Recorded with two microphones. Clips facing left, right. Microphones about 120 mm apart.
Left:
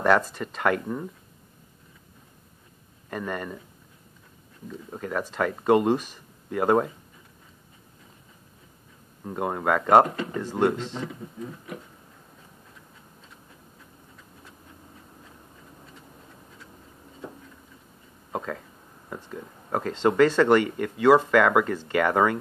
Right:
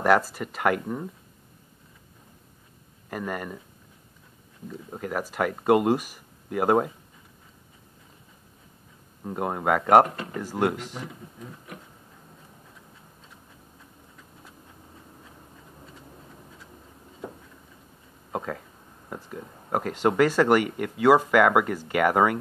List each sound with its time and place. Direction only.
0.0 s speech: 5° right (ahead or behind)
3.1 s speech: 5° right (ahead or behind)
4.6 s speech: 10° right (ahead or behind)
9.2 s speech: 5° right (ahead or behind)
18.3 s a sound: 10° right (ahead or behind)
19.7 s speech: 10° right (ahead or behind)